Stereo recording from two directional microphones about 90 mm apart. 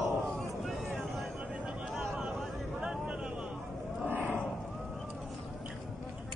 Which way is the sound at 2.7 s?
10° right (ahead or behind).